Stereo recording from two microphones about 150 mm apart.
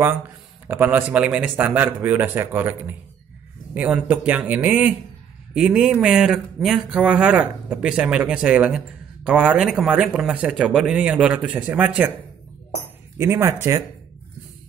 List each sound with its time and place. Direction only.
0.7 s speech: 15° right (ahead or behind)
13.2 s speech: 20° right (ahead or behind)